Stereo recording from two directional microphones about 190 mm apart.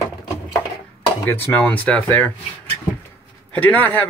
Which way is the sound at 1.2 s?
10° left (ahead or behind).